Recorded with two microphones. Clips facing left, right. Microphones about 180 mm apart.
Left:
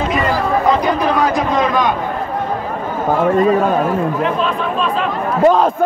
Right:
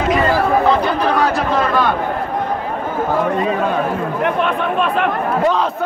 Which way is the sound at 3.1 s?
45° left (ahead or behind).